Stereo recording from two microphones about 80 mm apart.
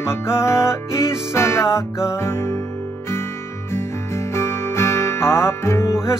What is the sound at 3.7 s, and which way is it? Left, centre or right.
Music, left.